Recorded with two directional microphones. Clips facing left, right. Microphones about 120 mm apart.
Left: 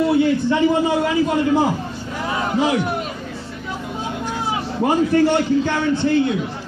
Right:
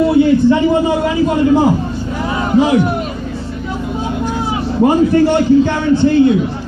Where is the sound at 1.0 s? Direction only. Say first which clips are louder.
Right 5 dB; 30° right (ahead or behind).